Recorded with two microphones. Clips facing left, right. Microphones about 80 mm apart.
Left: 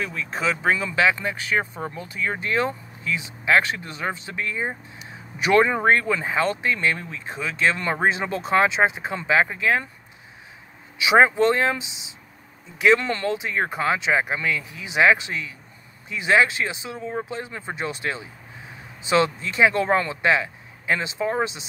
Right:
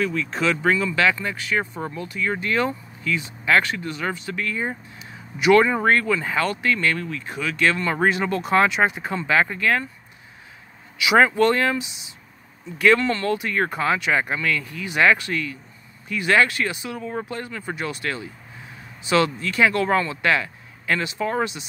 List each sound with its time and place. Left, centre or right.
0.0 s speech: centre
5.4 s speech: left
11.0 s speech: left